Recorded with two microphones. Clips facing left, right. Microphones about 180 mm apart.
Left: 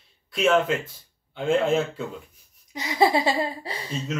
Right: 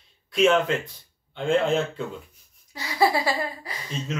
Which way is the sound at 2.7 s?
20° left (ahead or behind).